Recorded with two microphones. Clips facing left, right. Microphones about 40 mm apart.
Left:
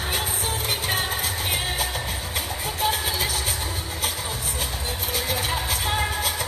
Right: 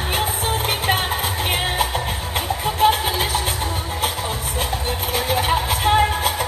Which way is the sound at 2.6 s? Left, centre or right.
Right.